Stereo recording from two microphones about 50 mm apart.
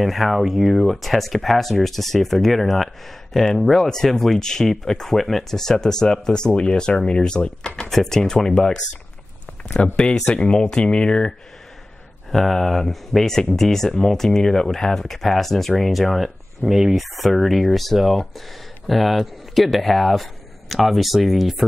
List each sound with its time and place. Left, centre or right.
0.0 s speech: centre
9.9 s speech: centre
12.3 s speech: centre